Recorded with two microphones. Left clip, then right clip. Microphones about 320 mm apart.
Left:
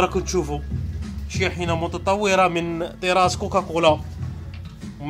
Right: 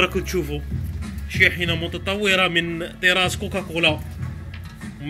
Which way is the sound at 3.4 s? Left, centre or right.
Left.